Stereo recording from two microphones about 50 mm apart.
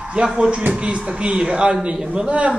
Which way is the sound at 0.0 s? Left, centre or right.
Centre.